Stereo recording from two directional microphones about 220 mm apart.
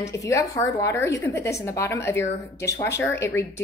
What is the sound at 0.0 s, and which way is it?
Speech, 15° left (ahead or behind).